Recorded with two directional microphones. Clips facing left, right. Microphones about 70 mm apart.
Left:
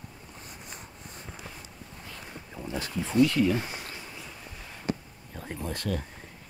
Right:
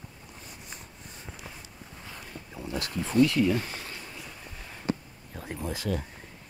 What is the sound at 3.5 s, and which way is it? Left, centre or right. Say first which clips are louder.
Speech: even; centre.